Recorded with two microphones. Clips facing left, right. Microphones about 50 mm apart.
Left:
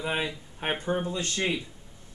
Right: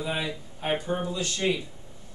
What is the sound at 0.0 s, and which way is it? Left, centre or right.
Speech, left.